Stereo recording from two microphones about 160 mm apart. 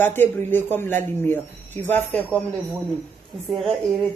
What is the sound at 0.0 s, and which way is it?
Speech, 15° left (ahead or behind).